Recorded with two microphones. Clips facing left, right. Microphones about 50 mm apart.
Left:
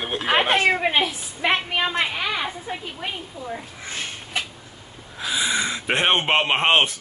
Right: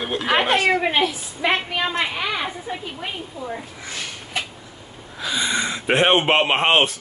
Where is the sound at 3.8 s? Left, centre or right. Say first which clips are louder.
Left 3 dB; left.